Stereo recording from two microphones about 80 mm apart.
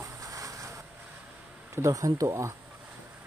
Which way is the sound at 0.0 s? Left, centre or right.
Right.